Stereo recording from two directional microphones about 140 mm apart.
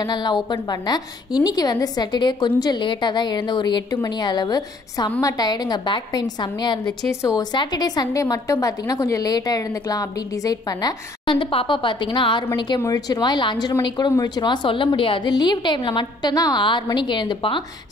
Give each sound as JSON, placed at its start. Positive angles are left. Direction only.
{"t": 0.0, "sound": "a woman's voice", "side_deg": 30}